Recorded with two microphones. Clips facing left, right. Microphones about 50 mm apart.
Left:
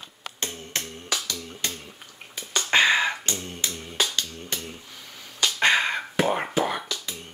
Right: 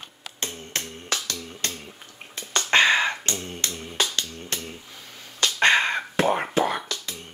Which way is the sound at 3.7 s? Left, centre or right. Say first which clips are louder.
Even; centre.